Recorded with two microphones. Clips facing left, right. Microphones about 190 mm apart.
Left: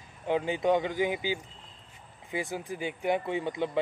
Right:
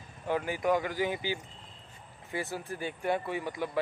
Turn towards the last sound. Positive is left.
turn(degrees=20)  # may be behind; listen again after turning